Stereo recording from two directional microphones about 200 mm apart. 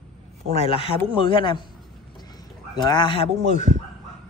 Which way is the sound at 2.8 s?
20° left (ahead or behind).